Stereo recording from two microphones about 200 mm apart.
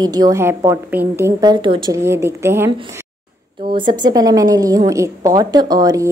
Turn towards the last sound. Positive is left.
turn(degrees=-15)  # may be behind; listen again after turning